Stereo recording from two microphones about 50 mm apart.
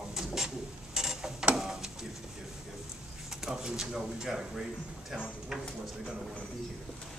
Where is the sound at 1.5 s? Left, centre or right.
Centre.